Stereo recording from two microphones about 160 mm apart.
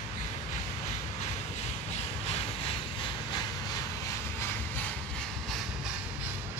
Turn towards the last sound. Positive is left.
turn(degrees=0)  # may be behind; listen again after turning